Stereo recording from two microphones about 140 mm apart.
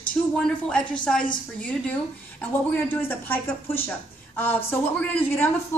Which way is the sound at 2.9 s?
15° left (ahead or behind).